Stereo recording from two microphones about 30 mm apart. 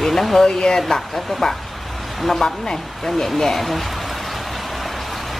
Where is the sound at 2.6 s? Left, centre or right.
Left.